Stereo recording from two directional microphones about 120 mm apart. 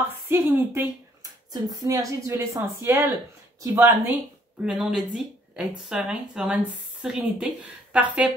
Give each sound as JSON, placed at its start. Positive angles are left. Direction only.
{"t": 0.1, "sound": "a woman's voice", "side_deg": -20}
{"t": 1.2, "sound": "a woman's voice", "side_deg": -30}
{"t": 4.6, "sound": "speech", "side_deg": -5}